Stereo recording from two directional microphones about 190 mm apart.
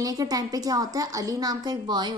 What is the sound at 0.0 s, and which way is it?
A woman's voice, 20° right (ahead or behind).